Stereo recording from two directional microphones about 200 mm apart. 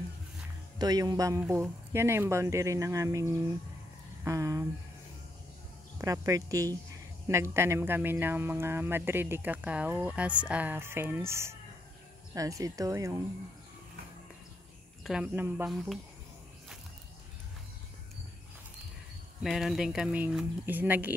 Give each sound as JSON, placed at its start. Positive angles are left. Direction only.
{"t": 0.7, "sound": "speech", "side_deg": -20}
{"t": 5.9, "sound": "speech", "side_deg": -15}
{"t": 15.0, "sound": "speech", "side_deg": -5}
{"t": 19.4, "sound": "speech", "side_deg": 0}